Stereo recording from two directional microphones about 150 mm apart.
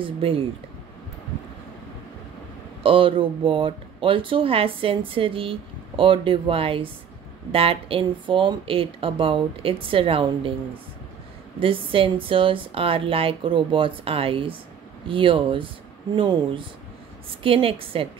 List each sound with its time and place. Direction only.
0.0 s speech: 40° right (ahead or behind)
2.8 s speech: 35° right (ahead or behind)
11.6 s speech: 35° right (ahead or behind)